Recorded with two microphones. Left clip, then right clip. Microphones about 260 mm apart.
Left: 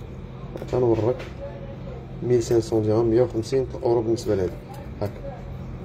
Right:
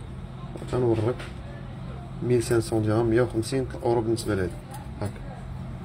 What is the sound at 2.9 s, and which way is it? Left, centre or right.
Speech, right.